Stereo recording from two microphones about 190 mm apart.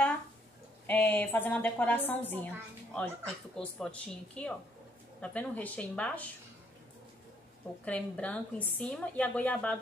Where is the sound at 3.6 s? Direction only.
5° left (ahead or behind).